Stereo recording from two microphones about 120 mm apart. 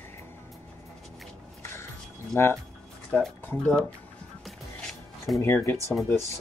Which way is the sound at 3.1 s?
10° left (ahead or behind).